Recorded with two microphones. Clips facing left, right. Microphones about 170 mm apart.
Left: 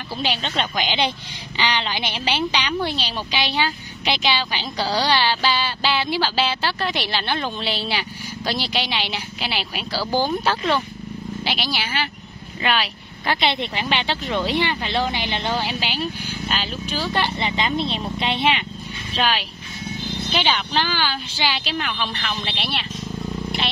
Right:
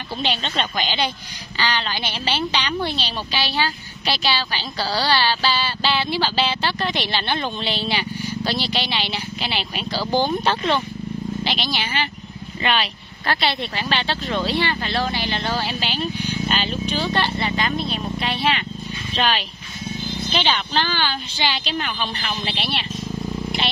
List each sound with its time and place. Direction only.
0.2 s a woman's voice: 10° left (ahead or behind)
13.3 s a woman's voice: 20° left (ahead or behind)
19.1 s speech: 5° left (ahead or behind)